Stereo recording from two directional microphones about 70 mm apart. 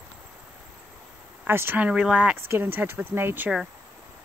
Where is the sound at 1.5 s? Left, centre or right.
Right.